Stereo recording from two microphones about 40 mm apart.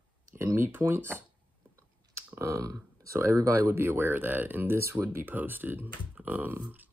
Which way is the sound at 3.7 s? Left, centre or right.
Right.